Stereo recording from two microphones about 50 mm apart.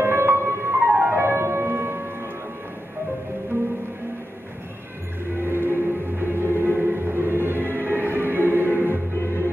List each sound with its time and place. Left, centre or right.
0.0 s music: right
5.4 s music: right
9.2 s music: left